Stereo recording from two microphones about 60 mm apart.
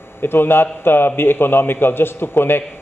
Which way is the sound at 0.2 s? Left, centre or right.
Left.